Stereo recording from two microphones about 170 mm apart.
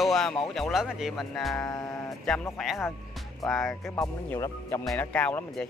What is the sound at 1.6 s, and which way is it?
Speech, 20° left (ahead or behind).